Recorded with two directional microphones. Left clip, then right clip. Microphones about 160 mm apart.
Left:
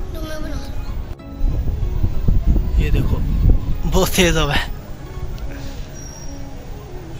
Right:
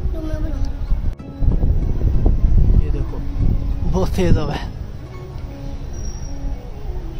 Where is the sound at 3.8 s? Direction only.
Centre (ahead or behind).